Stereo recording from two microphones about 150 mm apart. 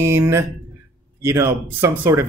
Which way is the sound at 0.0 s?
20° right (ahead or behind).